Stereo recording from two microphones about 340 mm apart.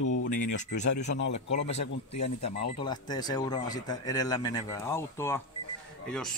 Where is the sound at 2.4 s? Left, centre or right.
Centre.